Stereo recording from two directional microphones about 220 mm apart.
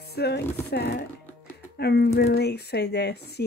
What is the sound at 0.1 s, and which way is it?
Speech, 45° left (ahead or behind).